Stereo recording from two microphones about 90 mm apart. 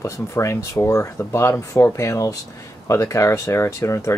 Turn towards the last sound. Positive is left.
turn(degrees=35)  # may be behind; listen again after turning